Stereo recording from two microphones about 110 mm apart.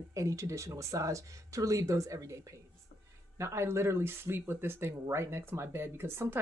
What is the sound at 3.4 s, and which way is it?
Speech, 25° right (ahead or behind).